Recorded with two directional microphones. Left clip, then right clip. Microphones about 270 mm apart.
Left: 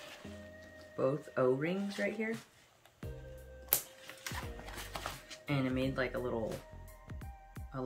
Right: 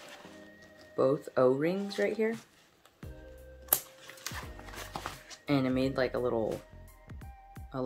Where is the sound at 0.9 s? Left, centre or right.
Right.